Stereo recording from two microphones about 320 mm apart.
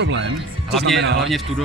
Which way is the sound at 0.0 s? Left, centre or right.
Right.